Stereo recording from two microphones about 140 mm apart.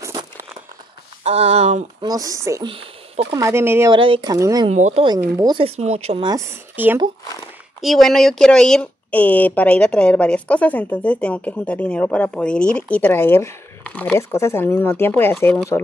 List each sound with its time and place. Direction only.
0.0 s a sound: 25° right (ahead or behind)
1.2 s speech: 50° right (ahead or behind)
2.0 s speech: 25° right (ahead or behind)
2.6 s a sound: 40° right (ahead or behind)
3.3 s speech: 20° right (ahead or behind)
3.9 s speech: 35° right (ahead or behind)
4.3 s speech: 25° right (ahead or behind)
4.6 s speech: 55° right (ahead or behind)
5.0 s speech: 30° right (ahead or behind)
5.8 s speech: 50° right (ahead or behind)
6.2 s speech: 20° right (ahead or behind)
7.8 s speech: centre (ahead or behind)